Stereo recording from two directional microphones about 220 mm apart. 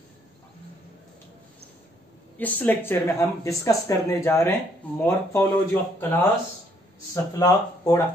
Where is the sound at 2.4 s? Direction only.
10° left (ahead or behind).